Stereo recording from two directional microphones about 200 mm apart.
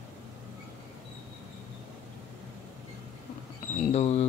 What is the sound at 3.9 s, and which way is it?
Speech, 30° left (ahead or behind).